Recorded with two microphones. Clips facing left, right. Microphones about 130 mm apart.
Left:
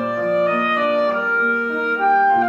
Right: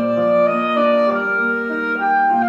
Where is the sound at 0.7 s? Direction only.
Centre (ahead or behind).